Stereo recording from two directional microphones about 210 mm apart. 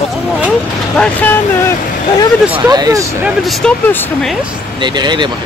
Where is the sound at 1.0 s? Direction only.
10° left (ahead or behind).